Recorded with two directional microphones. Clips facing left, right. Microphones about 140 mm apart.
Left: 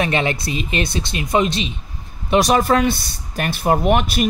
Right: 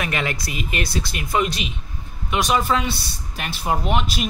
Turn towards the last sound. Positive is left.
turn(degrees=55)  # may be behind; listen again after turning